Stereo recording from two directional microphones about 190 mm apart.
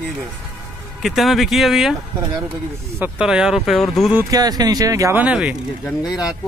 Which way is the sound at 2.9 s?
10° right (ahead or behind).